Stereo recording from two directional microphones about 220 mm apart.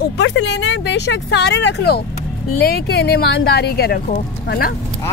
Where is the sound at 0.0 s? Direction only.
55° left (ahead or behind).